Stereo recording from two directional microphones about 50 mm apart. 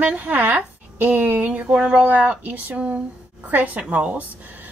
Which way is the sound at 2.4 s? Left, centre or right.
Right.